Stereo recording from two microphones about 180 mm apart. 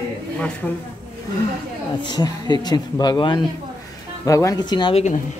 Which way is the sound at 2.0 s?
25° left (ahead or behind).